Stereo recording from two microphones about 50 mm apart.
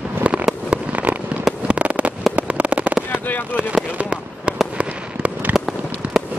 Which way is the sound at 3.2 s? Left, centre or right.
Left.